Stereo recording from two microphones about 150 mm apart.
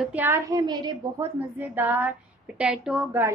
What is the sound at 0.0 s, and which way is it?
Speech, 10° right (ahead or behind).